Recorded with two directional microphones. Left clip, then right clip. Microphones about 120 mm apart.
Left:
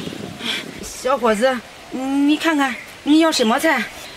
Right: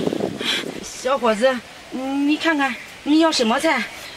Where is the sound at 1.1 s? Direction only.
25° left (ahead or behind).